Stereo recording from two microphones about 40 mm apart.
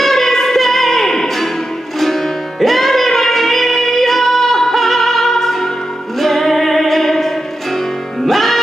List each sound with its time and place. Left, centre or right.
0.0 s music: centre